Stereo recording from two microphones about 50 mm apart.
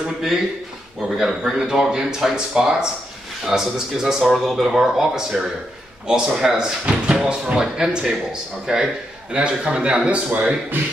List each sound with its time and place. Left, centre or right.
1.1 s speech: centre